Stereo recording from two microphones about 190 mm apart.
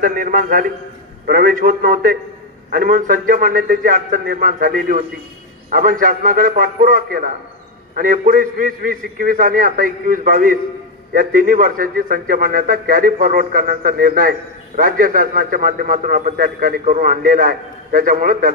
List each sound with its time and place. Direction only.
0.0 s a man's voice: 45° right (ahead or behind)